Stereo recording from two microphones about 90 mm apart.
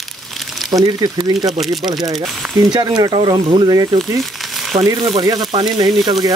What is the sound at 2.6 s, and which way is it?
Speech, 45° right (ahead or behind).